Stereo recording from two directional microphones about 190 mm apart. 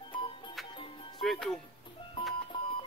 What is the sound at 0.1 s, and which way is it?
Music, 25° left (ahead or behind).